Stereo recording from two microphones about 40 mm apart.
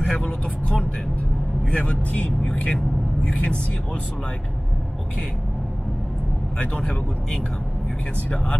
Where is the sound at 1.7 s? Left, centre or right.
Left.